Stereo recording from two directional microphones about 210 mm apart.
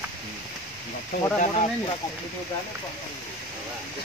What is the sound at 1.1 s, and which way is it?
Speech, 35° left (ahead or behind).